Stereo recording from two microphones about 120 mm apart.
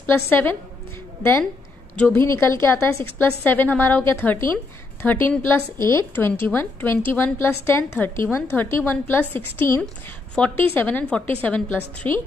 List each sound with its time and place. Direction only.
0.0 s a woman's voice: 15° left (ahead or behind)
2.1 s a woman's voice: 25° left (ahead or behind)